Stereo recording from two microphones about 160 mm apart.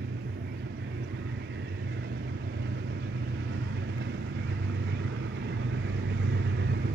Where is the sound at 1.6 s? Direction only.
90° right.